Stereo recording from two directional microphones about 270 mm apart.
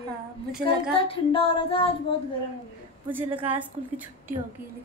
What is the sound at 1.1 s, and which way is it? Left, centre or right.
Female singing, centre.